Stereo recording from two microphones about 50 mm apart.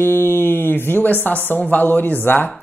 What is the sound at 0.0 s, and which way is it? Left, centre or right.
Speech, left.